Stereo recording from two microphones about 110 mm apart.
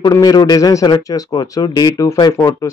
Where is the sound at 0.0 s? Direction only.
35° left (ahead or behind).